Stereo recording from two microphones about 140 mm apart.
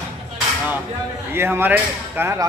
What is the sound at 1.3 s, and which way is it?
Speech, 15° right (ahead or behind).